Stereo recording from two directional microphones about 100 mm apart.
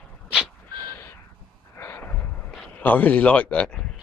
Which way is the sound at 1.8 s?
20° left (ahead or behind).